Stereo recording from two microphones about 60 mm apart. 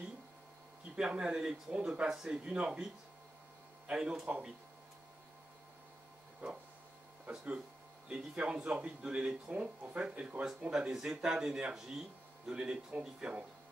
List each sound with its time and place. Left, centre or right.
0.9 s speech: centre
6.4 s a sound: right
7.2 s speech: centre